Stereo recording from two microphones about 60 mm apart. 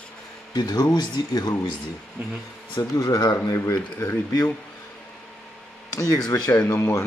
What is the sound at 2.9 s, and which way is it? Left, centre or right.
Speech, left.